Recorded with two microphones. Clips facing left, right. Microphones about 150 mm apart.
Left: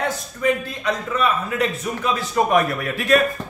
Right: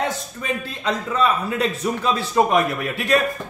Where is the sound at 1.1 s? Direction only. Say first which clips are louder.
Right 2 dB; 30° right (ahead or behind).